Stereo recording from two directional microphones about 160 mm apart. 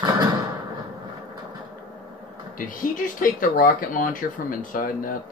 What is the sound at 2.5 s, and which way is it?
Speech, 55° left (ahead or behind).